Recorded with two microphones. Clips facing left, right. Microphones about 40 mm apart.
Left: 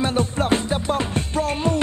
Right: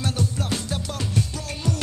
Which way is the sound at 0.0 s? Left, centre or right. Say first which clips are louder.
Left 6 dB; left.